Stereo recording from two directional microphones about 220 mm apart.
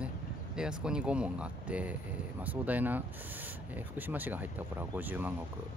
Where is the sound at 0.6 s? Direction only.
5° right (ahead or behind).